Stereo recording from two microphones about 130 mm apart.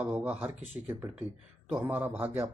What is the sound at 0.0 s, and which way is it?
Speech, 10° right (ahead or behind).